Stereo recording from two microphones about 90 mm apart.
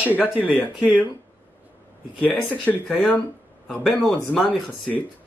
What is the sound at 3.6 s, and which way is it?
A man's voice, 10° left (ahead or behind).